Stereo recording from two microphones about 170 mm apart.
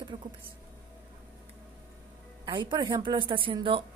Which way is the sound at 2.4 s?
25° right (ahead or behind).